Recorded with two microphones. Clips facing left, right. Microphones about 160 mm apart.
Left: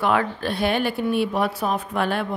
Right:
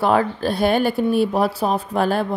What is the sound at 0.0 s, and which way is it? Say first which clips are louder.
Speech: right 4 dB; 35° right (ahead or behind).